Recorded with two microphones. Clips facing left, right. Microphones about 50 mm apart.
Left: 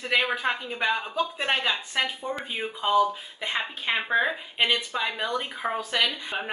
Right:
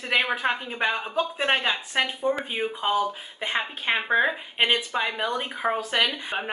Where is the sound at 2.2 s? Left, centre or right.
Centre.